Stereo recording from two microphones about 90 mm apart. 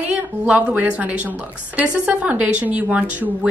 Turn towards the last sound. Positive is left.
turn(degrees=-15)  # may be behind; listen again after turning